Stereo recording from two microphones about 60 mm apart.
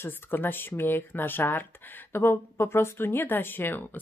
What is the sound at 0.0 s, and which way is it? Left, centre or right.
Speech, left.